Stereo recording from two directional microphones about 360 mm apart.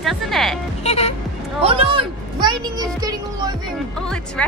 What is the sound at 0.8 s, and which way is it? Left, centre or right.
Speech, centre.